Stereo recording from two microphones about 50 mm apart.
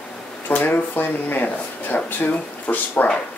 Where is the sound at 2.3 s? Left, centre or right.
Left.